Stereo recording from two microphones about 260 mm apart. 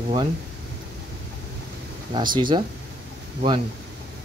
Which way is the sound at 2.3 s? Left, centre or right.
Centre.